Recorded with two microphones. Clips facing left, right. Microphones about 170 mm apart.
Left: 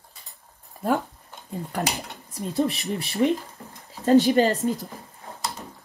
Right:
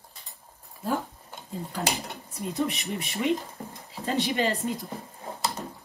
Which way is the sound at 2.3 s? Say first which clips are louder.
Left 4 dB; 35° left (ahead or behind).